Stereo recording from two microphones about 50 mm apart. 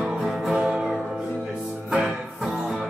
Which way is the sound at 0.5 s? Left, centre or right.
Centre.